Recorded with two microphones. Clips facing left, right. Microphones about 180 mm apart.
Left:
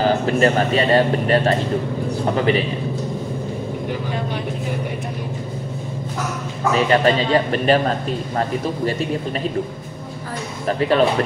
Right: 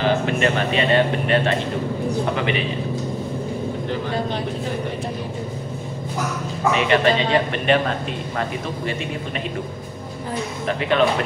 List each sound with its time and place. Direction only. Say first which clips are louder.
0.0 s a man's voice: left 3 dB; 40° left (ahead or behind)
6.7 s a man's voice: left 2 dB; 40° left (ahead or behind)
10.7 s a man's voice: left 3 dB; 35° left (ahead or behind)